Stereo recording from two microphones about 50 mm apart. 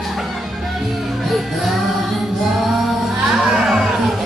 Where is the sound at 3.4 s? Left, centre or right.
Centre.